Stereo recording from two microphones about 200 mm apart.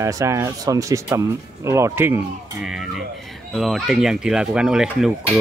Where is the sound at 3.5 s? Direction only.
Centre (ahead or behind).